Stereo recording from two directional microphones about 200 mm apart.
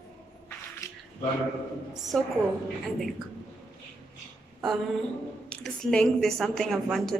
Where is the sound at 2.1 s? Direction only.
Centre (ahead or behind).